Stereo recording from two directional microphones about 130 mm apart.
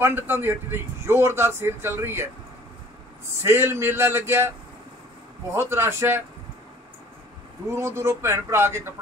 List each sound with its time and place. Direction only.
0.0 s speech: 15° right (ahead or behind)
3.4 s speech: 20° right (ahead or behind)
5.5 s speech: 20° right (ahead or behind)
7.7 s speech: 20° right (ahead or behind)